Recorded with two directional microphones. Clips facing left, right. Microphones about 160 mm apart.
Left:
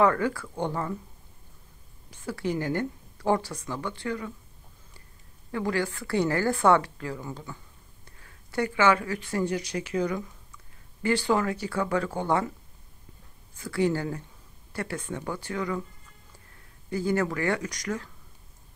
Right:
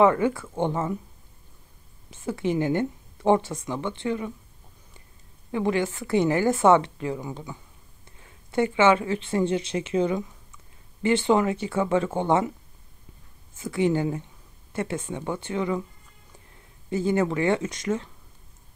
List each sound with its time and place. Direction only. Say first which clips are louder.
0.0 s speech: right 4 dB; 20° right (ahead or behind)
2.0 s speech: right 4 dB; 20° right (ahead or behind)
5.5 s speech: right 4 dB; 20° right (ahead or behind)
13.6 s speech: right 3 dB; 20° right (ahead or behind)
16.9 s speech: right 3 dB; 20° right (ahead or behind)